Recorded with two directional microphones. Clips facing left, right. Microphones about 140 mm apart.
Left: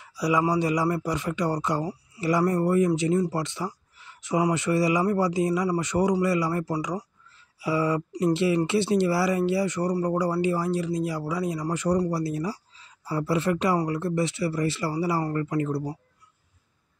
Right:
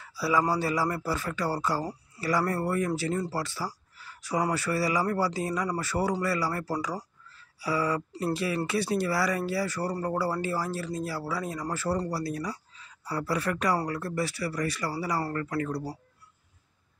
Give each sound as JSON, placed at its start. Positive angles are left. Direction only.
{"t": 0.0, "sound": "speech", "side_deg": 20}